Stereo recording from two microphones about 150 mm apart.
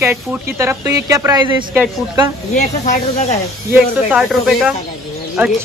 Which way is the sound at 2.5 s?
50° left (ahead or behind).